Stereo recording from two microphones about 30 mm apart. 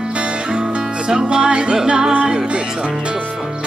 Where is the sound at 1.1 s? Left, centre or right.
Right.